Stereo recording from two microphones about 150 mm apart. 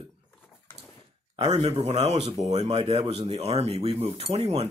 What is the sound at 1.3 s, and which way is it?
Speech, 45° right (ahead or behind).